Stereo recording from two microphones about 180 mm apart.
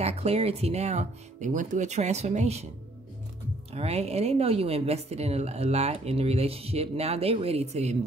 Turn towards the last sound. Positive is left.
turn(degrees=-35)  # may be behind; listen again after turning